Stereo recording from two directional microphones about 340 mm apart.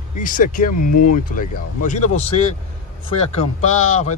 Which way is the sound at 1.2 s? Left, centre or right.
Left.